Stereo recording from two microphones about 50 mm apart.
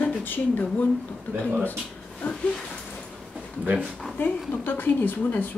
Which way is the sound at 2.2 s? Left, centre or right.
Left.